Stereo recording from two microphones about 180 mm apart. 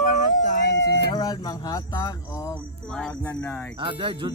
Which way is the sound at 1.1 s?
20° left (ahead or behind).